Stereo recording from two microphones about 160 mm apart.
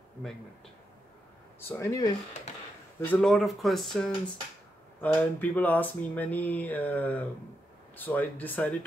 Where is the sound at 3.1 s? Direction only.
5° left (ahead or behind).